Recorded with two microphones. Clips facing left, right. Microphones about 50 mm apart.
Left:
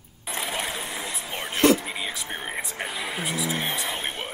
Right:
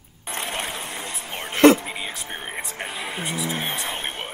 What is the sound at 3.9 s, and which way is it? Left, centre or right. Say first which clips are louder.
Music: right 1 dB; right.